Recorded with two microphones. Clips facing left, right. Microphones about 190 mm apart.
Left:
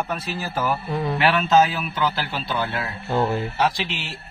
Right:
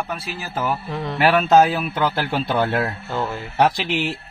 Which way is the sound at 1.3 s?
50° right (ahead or behind).